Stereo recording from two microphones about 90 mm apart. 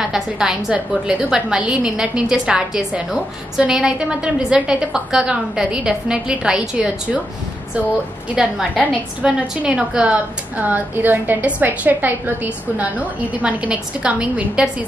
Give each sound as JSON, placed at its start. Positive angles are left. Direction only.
{"t": 0.0, "sound": "a woman's voice", "side_deg": -5}
{"t": 8.4, "sound": "a woman's voice", "side_deg": -5}
{"t": 13.4, "sound": "a woman's voice", "side_deg": -15}